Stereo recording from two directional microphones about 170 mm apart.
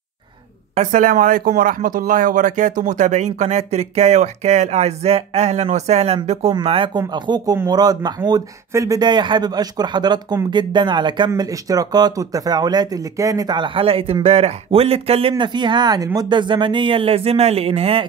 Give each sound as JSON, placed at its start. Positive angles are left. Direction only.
{"t": 0.7, "sound": "speech", "side_deg": -50}